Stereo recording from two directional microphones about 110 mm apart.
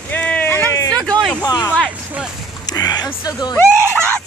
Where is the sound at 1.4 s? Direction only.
35° left (ahead or behind).